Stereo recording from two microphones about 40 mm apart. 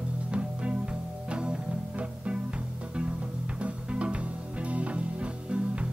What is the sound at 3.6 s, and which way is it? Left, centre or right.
Music, right.